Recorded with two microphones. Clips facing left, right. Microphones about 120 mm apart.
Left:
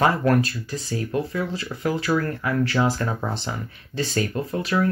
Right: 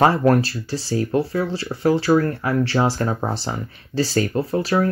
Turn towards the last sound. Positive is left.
turn(degrees=-35)  # may be behind; listen again after turning